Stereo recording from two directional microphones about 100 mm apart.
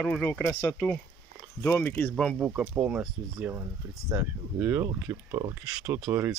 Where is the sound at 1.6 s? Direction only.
20° left (ahead or behind).